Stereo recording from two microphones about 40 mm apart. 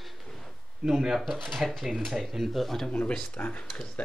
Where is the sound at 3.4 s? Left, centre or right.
Left.